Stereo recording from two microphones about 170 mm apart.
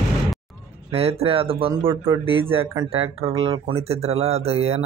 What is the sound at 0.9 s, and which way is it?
Speech, 35° right (ahead or behind).